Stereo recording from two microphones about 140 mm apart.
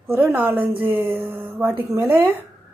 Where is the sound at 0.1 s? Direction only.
15° right (ahead or behind).